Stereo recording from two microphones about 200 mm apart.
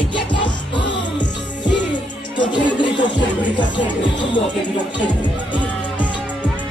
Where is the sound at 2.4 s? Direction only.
25° left (ahead or behind).